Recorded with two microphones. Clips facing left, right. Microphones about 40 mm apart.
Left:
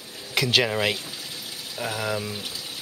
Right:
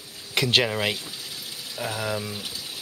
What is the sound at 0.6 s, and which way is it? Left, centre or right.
Speech, centre.